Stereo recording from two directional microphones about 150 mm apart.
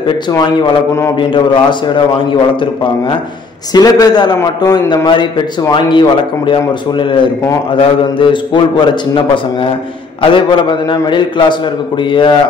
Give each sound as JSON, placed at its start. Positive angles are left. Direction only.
{"t": 0.0, "sound": "a man's voice", "side_deg": 30}